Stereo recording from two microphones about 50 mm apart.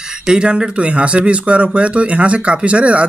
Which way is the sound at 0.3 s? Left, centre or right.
Centre.